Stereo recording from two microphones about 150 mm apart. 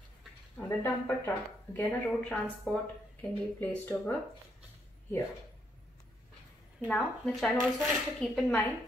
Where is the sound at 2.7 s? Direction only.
10° left (ahead or behind).